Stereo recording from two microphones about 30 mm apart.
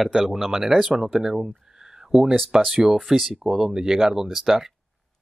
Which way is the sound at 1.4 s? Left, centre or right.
Centre.